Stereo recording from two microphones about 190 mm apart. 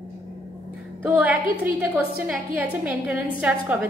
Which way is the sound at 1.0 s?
10° right (ahead or behind).